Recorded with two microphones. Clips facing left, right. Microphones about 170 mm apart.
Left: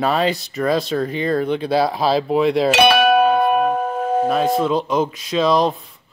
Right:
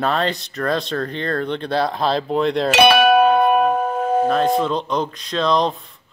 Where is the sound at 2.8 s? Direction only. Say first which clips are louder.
Right 3 dB; 60° right (ahead or behind).